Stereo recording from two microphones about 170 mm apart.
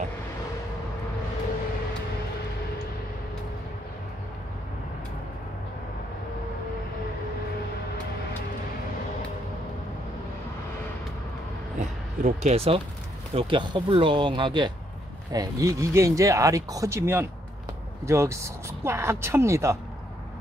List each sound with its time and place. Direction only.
11.8 s speech: 45° right (ahead or behind); by 19.8 s 15° right (ahead or behind)